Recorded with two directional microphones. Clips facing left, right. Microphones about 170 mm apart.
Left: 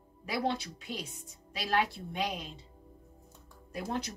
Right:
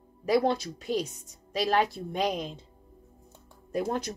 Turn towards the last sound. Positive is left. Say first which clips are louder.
# right 6 dB
turn(degrees=-50)  # may be behind; listen again after turning